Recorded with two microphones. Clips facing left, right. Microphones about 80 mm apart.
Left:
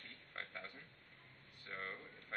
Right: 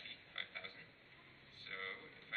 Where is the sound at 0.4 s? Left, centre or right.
Left.